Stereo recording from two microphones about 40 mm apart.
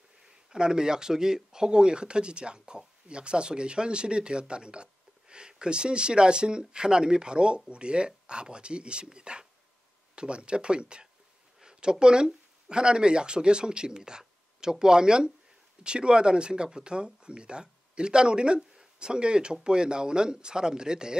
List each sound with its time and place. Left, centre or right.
0.2 s speech: centre